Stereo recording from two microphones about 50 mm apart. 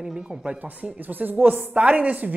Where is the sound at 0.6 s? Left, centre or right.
Right.